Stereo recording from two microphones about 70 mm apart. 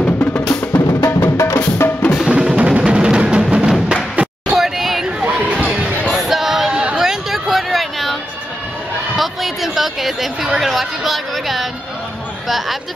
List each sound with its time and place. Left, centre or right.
0.0 s percussion: left
0.8 s music: left
1.2 s music: left
2.3 s music: centre
3.9 s a sound: centre
5.2 s music: centre
6.1 s a sound: centre
12.4 s chatter: centre